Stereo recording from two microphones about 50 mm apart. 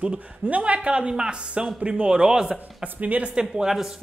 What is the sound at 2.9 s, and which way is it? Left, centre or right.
Speech, right.